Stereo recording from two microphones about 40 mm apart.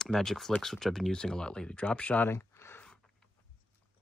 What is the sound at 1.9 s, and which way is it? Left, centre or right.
Speech, left.